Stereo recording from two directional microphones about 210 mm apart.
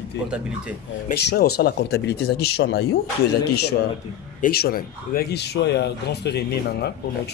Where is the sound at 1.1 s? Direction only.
50° left (ahead or behind).